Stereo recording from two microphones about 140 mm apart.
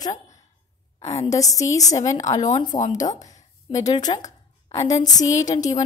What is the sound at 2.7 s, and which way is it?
Speech, 60° left (ahead or behind).